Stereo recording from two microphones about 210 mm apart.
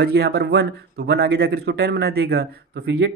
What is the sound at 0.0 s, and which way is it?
Speech, 50° right (ahead or behind).